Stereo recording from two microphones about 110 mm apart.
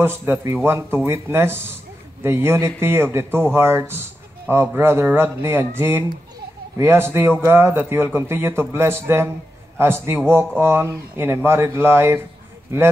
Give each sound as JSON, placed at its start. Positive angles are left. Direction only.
{"t": 0.0, "sound": "a man's voice", "side_deg": -20}